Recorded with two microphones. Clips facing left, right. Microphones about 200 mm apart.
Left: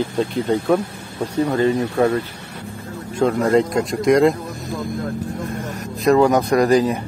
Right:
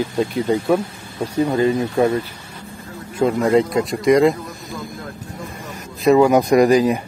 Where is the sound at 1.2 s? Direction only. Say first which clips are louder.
Right 1 dB; 15° right (ahead or behind).